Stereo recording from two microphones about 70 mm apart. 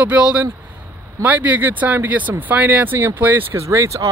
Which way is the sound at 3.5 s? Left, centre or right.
Right.